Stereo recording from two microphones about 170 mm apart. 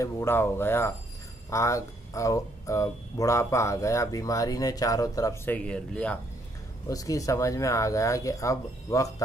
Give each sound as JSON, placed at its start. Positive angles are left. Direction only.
{"t": 0.0, "sound": "speech", "side_deg": 15}
{"t": 6.9, "sound": "speech", "side_deg": 20}